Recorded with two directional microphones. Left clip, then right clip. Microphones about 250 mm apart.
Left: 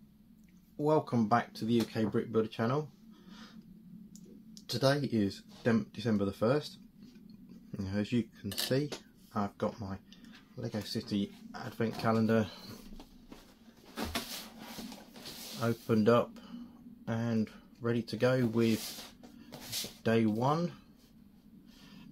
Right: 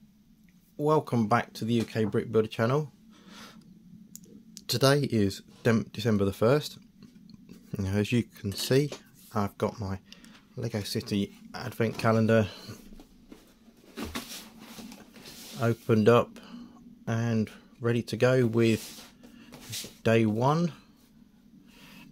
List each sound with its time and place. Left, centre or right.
0.7 s speech: right
3.3 s a sound: right
4.6 s speech: right
15.6 s speech: right
20.0 s speech: right